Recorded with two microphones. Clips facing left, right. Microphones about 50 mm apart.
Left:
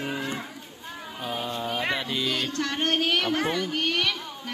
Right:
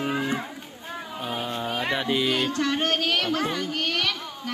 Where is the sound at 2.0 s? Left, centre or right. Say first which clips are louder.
Right 4 dB; centre.